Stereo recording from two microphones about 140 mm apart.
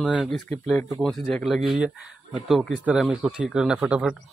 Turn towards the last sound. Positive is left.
turn(degrees=-5)  # may be behind; listen again after turning